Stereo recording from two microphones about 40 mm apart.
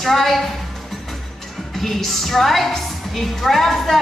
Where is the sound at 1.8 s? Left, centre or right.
Centre.